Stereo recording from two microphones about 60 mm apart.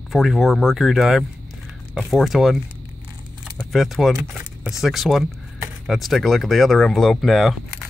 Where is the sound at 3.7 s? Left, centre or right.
Centre.